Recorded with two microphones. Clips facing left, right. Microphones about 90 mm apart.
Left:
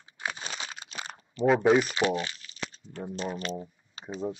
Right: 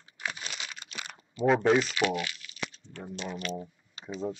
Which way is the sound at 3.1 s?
35° left (ahead or behind).